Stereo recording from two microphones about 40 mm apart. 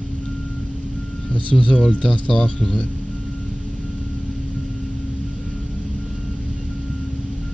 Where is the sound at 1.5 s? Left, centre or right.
Left.